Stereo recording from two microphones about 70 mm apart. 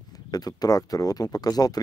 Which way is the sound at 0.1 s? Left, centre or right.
Left.